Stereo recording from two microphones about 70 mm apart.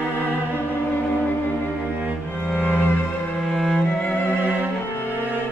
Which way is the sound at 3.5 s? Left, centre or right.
Centre.